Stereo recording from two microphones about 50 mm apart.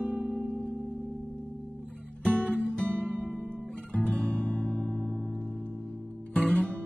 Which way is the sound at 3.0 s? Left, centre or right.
Right.